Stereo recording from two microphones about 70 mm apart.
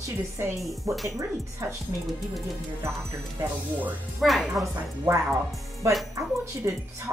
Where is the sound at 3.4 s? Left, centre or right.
Right.